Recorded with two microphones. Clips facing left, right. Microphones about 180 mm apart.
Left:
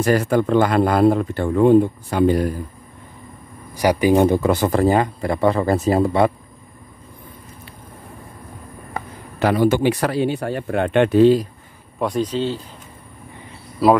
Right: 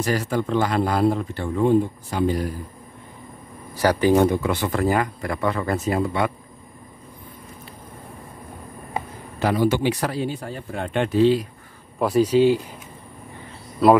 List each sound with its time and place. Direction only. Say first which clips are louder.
0.0 s speech: left 6 dB; 55° left (ahead or behind)
3.7 s speech: left 2 dB; 15° left (ahead or behind)
4.4 s speech: left 6 dB; 40° left (ahead or behind)
4.8 s speech: left 5 dB; 25° left (ahead or behind)
9.4 s a man's voice: left 3 dB; 70° left (ahead or behind)
9.7 s speech: left 4 dB; 50° left (ahead or behind)
12.0 s speech: right 4 dB; 5° right (ahead or behind)
13.8 s speech: even; 5° left (ahead or behind)